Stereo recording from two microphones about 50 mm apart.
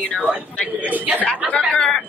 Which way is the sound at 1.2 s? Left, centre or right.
Left.